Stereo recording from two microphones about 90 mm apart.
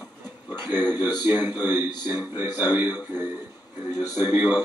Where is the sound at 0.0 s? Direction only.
50° left (ahead or behind).